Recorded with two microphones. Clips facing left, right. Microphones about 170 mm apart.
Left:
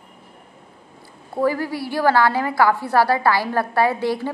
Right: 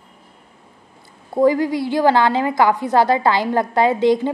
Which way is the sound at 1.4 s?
20° right (ahead or behind).